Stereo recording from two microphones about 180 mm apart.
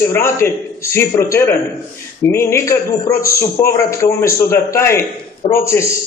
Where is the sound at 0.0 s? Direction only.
15° left (ahead or behind).